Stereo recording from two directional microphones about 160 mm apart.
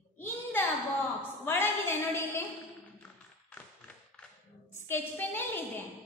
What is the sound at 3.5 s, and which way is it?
Tap, 10° left (ahead or behind).